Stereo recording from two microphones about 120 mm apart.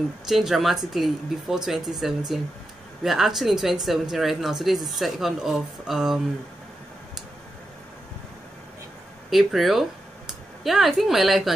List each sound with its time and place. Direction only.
0.3 s speech: 5° right (ahead or behind)
9.3 s speech: centre (ahead or behind)